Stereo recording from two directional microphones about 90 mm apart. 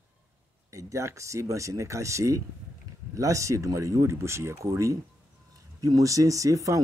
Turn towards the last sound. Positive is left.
turn(degrees=-40)  # may be behind; listen again after turning